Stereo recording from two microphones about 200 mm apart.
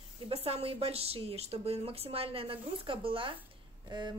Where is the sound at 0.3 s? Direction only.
30° right (ahead or behind).